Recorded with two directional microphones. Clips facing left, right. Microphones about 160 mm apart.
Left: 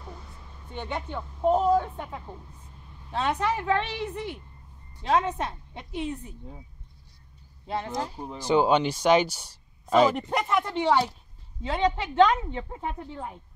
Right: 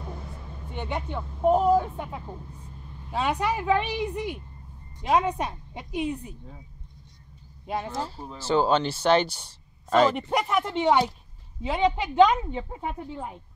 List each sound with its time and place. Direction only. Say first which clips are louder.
0.7 s a woman's voice: right 1 dB; 10° right (ahead or behind)
7.6 s speech: right 1 dB; 15° right (ahead or behind)
7.9 s speech: left 1 dB; 15° left (ahead or behind)
10.1 s a woman's voice: right 1 dB; 10° right (ahead or behind)